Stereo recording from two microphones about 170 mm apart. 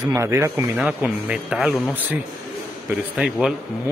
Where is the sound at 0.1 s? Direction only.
15° right (ahead or behind).